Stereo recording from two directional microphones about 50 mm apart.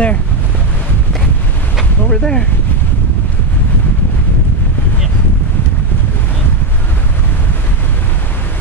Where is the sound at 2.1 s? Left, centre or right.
Centre.